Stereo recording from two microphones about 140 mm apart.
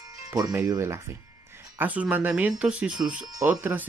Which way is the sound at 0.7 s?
20° right (ahead or behind).